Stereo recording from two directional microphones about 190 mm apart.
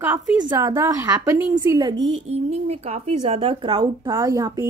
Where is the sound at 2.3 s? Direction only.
35° right (ahead or behind).